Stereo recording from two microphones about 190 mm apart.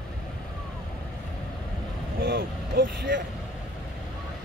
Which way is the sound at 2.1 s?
50° right (ahead or behind).